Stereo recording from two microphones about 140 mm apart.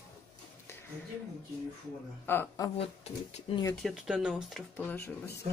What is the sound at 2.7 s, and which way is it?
Speech, 45° left (ahead or behind).